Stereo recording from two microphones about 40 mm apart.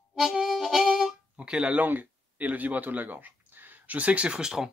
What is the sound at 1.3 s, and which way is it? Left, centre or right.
Music, right.